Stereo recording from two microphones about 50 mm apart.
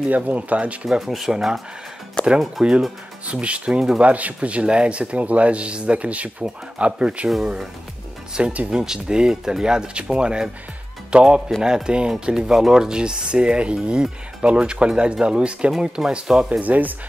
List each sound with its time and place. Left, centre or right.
0.1 s speech: right
0.8 s speech: centre
2.2 s speech: centre
2.6 s speech: centre
3.3 s speech: right
8.6 s speech: centre
16.6 s speech: right